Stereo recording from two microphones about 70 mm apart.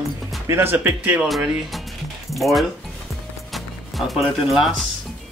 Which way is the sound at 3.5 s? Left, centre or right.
Centre.